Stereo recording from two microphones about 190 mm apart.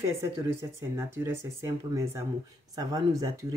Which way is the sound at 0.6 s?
15° right (ahead or behind).